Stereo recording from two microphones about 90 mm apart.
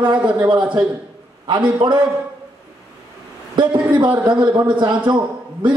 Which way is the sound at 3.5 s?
60° right (ahead or behind).